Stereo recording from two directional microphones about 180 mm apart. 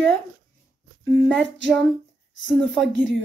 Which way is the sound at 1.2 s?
5° left (ahead or behind).